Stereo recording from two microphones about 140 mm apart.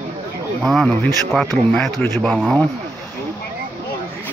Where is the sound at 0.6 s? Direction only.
5° left (ahead or behind).